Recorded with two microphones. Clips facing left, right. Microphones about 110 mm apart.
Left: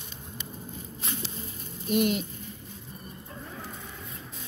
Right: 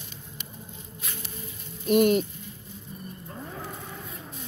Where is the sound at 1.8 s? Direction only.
50° right (ahead or behind).